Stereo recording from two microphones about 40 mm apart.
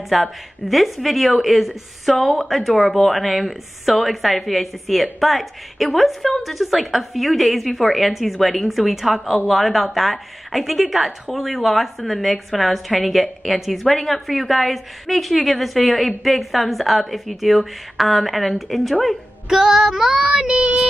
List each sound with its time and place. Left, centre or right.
0.1 s speech: centre
19.5 s music: centre
20.2 s child singing: right